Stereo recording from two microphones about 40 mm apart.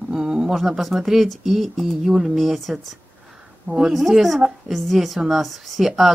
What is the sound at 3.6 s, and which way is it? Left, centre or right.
Speech, centre.